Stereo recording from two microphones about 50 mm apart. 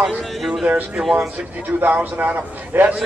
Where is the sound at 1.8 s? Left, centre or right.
Right.